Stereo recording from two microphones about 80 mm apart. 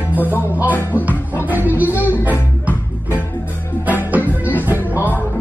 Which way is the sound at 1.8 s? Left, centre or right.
Right.